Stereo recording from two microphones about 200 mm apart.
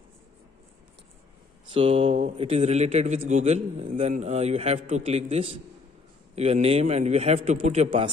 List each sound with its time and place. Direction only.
1.7 s speech: 25° right (ahead or behind)